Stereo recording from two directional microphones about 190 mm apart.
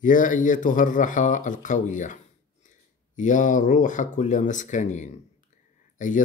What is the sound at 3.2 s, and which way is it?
Speech, 40° left (ahead or behind).